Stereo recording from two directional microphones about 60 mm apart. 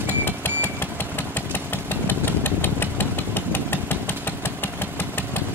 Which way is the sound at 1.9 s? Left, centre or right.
Left.